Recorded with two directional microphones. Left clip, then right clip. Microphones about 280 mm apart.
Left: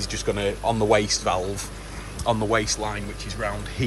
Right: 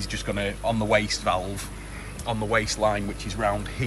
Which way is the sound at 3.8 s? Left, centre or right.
Centre.